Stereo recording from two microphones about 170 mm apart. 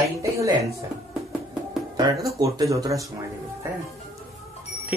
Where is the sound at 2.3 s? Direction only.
20° right (ahead or behind).